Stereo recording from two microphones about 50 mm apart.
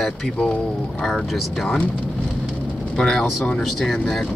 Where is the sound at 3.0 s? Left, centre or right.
Centre.